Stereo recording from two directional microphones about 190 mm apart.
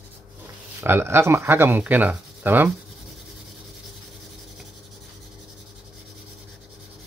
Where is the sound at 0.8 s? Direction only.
10° right (ahead or behind).